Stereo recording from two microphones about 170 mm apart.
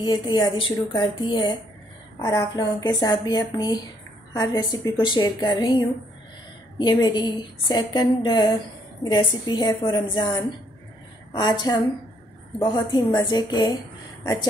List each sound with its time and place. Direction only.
0.0 s a woman's voice: 25° left (ahead or behind)